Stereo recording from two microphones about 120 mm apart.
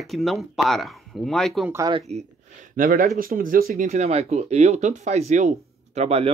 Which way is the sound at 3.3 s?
90° right.